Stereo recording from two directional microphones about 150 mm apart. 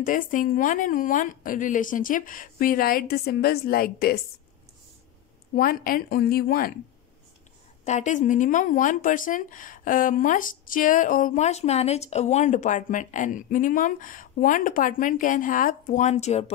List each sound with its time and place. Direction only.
0.0 s speech: 65° left (ahead or behind); by 4.2 s 90° left
5.5 s speech: 75° left (ahead or behind)
7.8 s speech: 50° left (ahead or behind)